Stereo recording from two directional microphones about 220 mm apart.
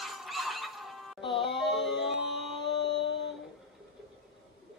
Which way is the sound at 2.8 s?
55° left (ahead or behind).